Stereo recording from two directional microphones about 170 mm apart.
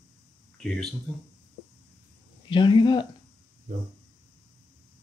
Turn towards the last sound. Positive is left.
turn(degrees=30)  # may be behind; listen again after turning